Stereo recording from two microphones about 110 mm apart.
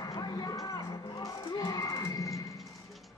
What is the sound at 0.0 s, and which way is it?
Music, 35° left (ahead or behind).